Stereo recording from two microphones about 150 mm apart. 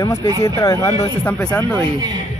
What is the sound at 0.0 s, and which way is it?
Speech, 20° left (ahead or behind).